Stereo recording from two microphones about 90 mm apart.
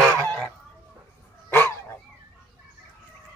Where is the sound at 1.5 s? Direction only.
25° left (ahead or behind).